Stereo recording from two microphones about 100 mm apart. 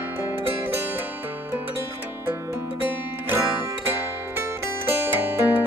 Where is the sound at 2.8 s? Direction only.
20° right (ahead or behind).